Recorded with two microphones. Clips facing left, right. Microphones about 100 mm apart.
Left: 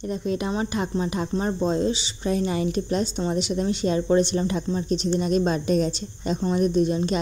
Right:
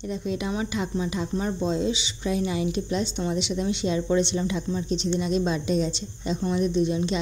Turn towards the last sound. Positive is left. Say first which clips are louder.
# left 2 dB
turn(degrees=45)  # may be behind; listen again after turning